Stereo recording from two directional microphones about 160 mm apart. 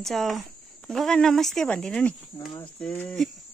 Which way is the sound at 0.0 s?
Centre (ahead or behind).